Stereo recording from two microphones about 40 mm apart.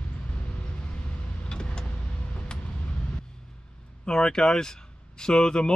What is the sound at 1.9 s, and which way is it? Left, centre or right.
Vehicle, left.